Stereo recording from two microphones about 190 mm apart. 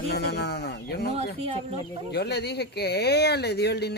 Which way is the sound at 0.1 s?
60° left (ahead or behind).